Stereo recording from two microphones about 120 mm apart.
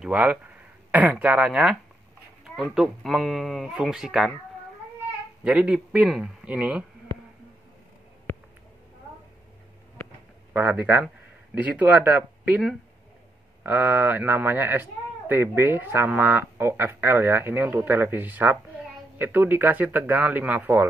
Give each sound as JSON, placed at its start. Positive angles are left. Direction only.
{"t": 0.0, "sound": "speech", "side_deg": -10}
{"t": 5.4, "sound": "speech", "side_deg": -10}
{"t": 10.5, "sound": "speech", "side_deg": -15}
{"t": 13.7, "sound": "speech", "side_deg": -15}